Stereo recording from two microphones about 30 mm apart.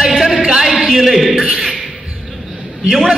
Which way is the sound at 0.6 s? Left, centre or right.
Centre.